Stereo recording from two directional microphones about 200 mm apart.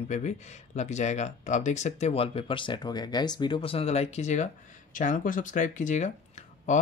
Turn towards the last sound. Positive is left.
turn(degrees=35)  # may be behind; listen again after turning